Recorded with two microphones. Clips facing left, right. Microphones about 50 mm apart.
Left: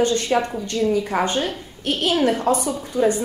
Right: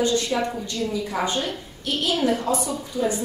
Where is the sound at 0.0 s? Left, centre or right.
Left.